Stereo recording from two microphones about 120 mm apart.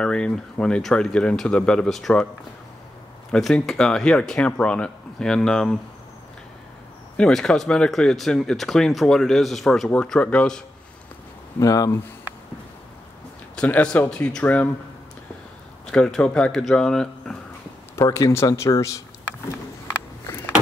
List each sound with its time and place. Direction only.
0.0 s speech: 5° left (ahead or behind)
3.3 s speech: 5° left (ahead or behind)
7.2 s speech: 5° left (ahead or behind)
11.6 s speech: 30° left (ahead or behind)
13.6 s speech: 10° left (ahead or behind)
15.9 s speech: 5° left (ahead or behind)
17.9 s speech: 25° left (ahead or behind)